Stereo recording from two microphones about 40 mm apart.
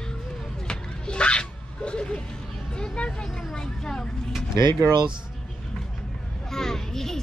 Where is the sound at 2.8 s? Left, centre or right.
Left.